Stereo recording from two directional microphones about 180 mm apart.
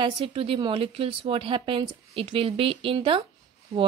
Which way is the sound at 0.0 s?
30° right (ahead or behind).